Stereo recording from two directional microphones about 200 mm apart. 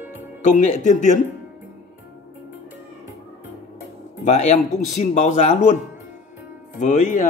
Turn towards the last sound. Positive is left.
turn(degrees=40)  # may be behind; listen again after turning